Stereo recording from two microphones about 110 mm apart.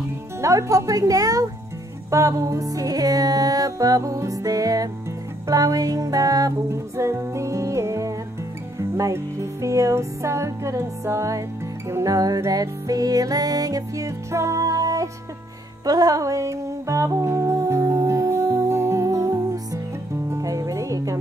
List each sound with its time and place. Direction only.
0.4 s music: 30° right (ahead or behind)